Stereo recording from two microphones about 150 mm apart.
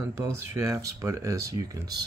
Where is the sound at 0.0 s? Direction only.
20° right (ahead or behind).